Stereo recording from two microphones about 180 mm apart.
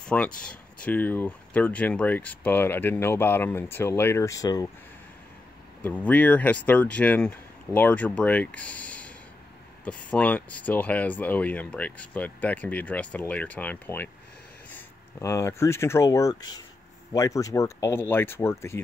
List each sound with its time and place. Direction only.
0.0 s speech: 5° left (ahead or behind)
5.8 s speech: 10° left (ahead or behind)